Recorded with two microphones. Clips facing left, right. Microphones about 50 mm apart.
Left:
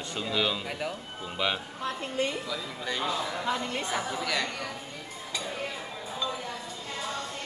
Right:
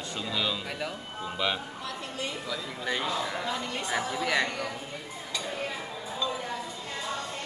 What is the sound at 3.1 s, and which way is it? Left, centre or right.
Speech, centre.